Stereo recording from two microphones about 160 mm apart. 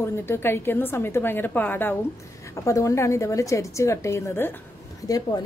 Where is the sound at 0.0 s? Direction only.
15° left (ahead or behind).